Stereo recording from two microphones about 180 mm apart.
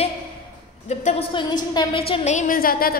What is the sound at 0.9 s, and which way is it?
A woman's voice, 35° left (ahead or behind).